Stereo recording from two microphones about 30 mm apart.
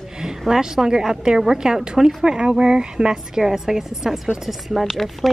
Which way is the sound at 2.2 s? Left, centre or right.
Right.